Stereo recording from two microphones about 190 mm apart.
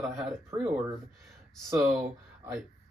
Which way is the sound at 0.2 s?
10° right (ahead or behind).